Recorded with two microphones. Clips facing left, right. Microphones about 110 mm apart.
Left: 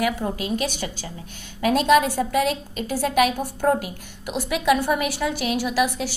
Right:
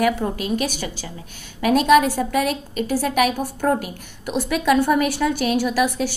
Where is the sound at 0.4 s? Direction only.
25° left (ahead or behind).